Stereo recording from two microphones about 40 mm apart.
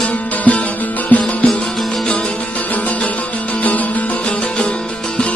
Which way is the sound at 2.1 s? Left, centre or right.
Left.